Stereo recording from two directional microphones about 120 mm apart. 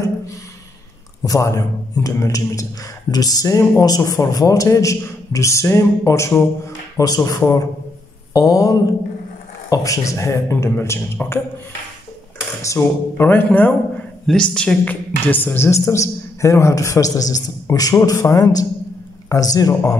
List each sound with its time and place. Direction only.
1.2 s a woman's voice: 25° left (ahead or behind)
8.3 s a sound: 30° left (ahead or behind)
9.7 s a woman's voice: 30° left (ahead or behind)
12.6 s a man's voice: 20° left (ahead or behind)